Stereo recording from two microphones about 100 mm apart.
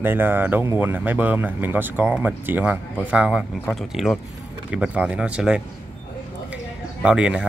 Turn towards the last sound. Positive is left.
turn(degrees=-10)  # may be behind; listen again after turning